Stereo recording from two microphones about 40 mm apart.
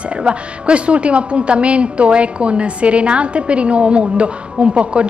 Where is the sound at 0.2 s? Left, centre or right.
Right.